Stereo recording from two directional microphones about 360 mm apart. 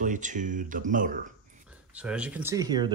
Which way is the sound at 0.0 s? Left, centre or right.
Right.